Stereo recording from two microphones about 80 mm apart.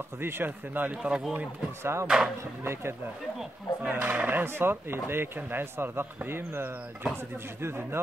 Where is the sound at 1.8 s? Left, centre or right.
Right.